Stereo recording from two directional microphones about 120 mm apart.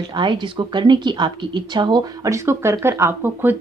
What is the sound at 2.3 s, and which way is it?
Speech, 25° right (ahead or behind).